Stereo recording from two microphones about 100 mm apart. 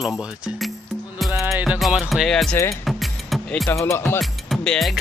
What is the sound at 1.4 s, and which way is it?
Music, 15° right (ahead or behind).